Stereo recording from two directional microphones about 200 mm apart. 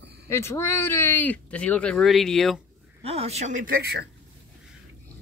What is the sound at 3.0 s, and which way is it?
Speech, 30° right (ahead or behind).